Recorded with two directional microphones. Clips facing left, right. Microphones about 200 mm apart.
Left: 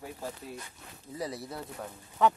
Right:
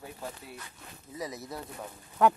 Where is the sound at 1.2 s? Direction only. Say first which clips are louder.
Left 1 dB; 30° left (ahead or behind).